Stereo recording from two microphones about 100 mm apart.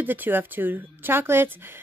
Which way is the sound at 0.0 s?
20° right (ahead or behind).